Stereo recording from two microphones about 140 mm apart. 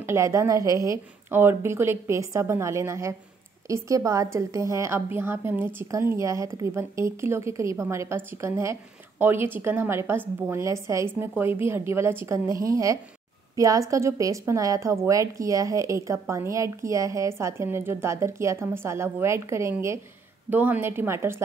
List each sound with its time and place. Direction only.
0.0 s a woman's voice: 20° right (ahead or behind)